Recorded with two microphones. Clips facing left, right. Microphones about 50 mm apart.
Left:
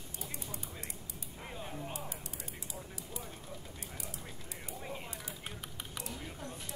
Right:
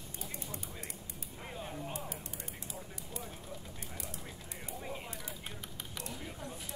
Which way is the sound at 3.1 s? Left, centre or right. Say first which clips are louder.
Right 2 dB; centre.